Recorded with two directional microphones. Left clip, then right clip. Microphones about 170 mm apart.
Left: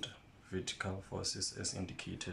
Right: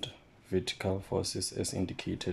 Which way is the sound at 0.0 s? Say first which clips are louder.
Right 4 dB; 30° right (ahead or behind).